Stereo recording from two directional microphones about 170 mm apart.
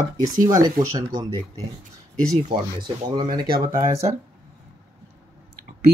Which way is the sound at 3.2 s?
25° right (ahead or behind).